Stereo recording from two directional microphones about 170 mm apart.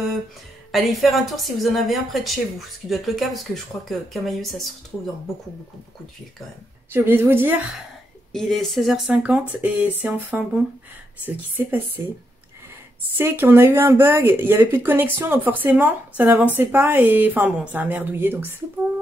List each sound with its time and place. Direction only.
0.7 s speech: centre (ahead or behind)
6.9 s speech: 15° right (ahead or behind)
8.3 s speech: centre (ahead or behind)
13.2 s speech: 15° right (ahead or behind)